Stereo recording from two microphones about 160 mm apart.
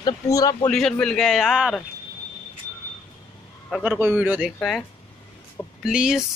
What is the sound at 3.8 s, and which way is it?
Speech, 10° right (ahead or behind).